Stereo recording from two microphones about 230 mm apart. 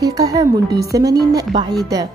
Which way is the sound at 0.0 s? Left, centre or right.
Centre.